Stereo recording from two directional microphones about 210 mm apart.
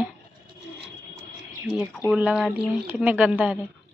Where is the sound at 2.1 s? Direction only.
5° right (ahead or behind).